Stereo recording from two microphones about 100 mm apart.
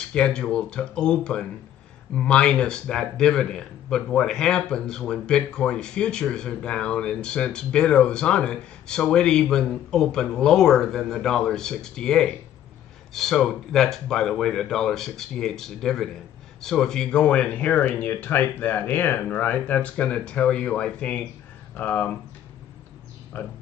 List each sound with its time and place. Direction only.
0.0 s a man's voice: 10° left (ahead or behind)
23.3 s speech: 20° left (ahead or behind)